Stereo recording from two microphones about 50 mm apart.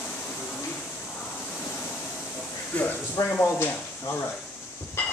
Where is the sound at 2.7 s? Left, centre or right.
Left.